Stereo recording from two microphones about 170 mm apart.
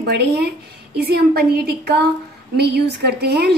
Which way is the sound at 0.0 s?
75° right (ahead or behind).